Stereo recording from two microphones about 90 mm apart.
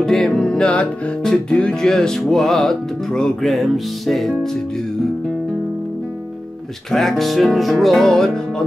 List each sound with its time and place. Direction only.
0.0 s music: 5° left (ahead or behind)
6.9 s music: 5° left (ahead or behind)